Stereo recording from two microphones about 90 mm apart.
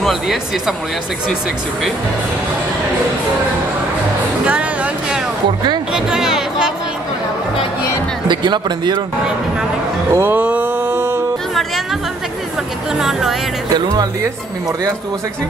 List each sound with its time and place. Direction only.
0.0 s speech: centre (ahead or behind)
5.9 s chatter: 5° right (ahead or behind)
8.3 s speech: 55° right (ahead or behind)
10.1 s a sound: 25° right (ahead or behind)
10.4 s mantra: 20° right (ahead or behind)
12.9 s speech: 5° right (ahead or behind)